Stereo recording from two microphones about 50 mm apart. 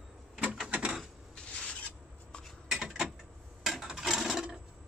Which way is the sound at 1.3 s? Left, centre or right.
Left.